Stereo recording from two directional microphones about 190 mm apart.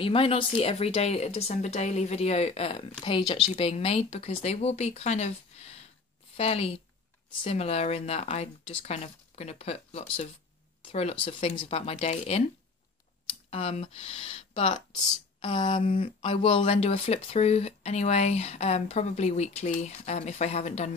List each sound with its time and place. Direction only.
0.0 s speech: 30° left (ahead or behind)
13.5 s speech: 30° left (ahead or behind)